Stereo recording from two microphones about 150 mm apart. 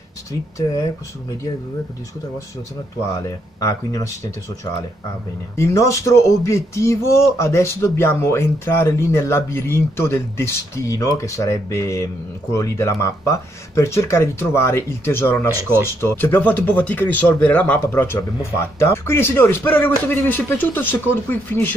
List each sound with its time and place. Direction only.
3.2 s speech: 25° left (ahead or behind)
5.6 s speech: 20° left (ahead or behind)